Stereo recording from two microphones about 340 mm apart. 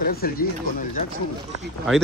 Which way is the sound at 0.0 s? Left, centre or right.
Left.